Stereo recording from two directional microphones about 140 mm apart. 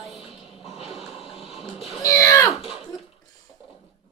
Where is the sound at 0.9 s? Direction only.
Centre (ahead or behind).